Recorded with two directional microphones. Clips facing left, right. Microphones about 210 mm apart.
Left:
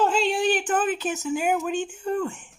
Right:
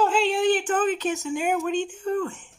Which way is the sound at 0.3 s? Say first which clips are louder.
Right 1 dB; 15° left (ahead or behind).